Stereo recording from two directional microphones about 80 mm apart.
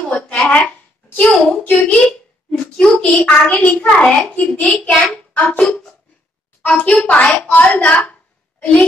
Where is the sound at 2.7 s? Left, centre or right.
Centre.